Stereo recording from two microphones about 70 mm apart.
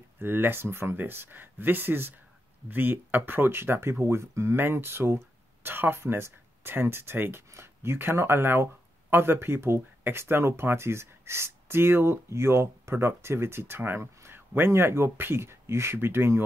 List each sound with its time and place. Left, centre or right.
0.2 s speech: right
4.6 s speech: right